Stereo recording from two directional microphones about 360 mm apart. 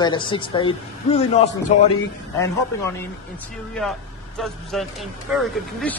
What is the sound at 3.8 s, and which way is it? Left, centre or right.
Speech, centre.